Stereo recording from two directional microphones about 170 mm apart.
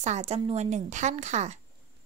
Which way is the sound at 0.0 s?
40° right (ahead or behind).